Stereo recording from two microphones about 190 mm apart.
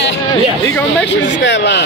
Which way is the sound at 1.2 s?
70° left (ahead or behind).